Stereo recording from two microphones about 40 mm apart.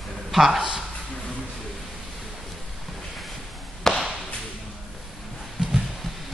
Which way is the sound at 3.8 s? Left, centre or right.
Centre.